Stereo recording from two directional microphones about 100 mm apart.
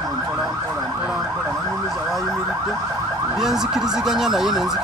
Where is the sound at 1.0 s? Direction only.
5° right (ahead or behind).